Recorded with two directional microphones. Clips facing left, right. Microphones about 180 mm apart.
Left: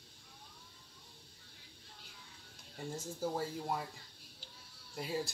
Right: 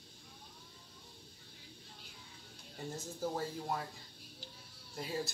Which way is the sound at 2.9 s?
10° left (ahead or behind).